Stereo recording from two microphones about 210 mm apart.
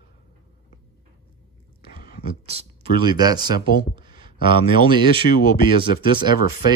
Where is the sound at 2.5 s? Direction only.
25° right (ahead or behind).